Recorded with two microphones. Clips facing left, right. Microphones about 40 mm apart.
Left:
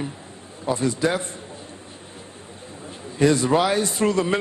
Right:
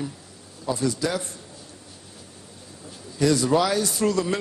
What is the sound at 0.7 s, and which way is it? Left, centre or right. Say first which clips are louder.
Speech: left 3 dB; left.